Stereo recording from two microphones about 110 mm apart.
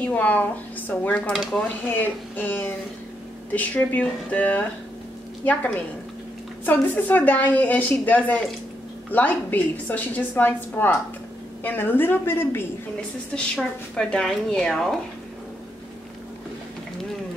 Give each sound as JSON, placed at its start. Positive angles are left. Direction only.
{"t": 0.1, "sound": "a woman's voice", "side_deg": 15}
{"t": 1.3, "sound": "speech", "side_deg": 0}
{"t": 1.9, "sound": "a woman's voice", "side_deg": 15}
{"t": 13.3, "sound": "a woman's voice", "side_deg": 10}